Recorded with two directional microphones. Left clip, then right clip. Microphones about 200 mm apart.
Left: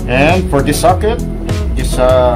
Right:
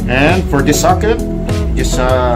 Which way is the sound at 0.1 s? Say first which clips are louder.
Left 1 dB; 20° left (ahead or behind).